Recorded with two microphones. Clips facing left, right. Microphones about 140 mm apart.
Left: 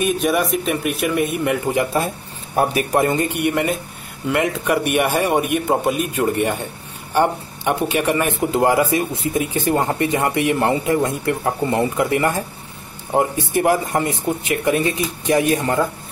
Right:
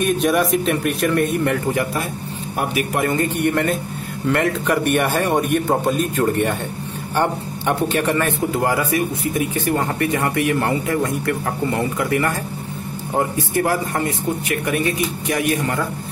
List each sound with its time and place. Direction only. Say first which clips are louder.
0.0 s speech: right 1 dB; 5° left (ahead or behind)
2.5 s a man's voice: left 4 dB; 35° left (ahead or behind)
3.1 s a man's voice: even; 15° left (ahead or behind)